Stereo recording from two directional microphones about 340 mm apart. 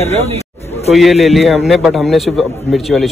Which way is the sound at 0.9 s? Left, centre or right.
Centre.